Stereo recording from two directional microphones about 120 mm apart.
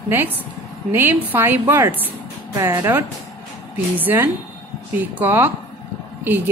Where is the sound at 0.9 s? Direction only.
15° right (ahead or behind).